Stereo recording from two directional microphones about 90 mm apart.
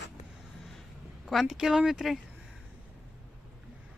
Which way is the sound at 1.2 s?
Centre (ahead or behind).